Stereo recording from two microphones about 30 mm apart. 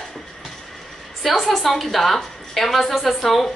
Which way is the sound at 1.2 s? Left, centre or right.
Centre.